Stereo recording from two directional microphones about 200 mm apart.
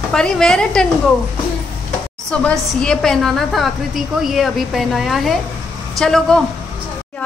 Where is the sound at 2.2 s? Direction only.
5° left (ahead or behind).